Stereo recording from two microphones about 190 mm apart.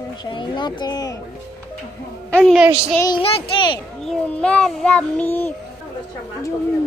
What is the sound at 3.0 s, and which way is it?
Speech, 25° left (ahead or behind).